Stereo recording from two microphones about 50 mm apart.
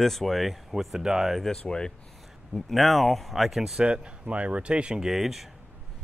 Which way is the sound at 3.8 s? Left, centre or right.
Right.